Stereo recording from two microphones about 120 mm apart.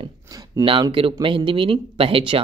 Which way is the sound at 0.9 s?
45° right (ahead or behind).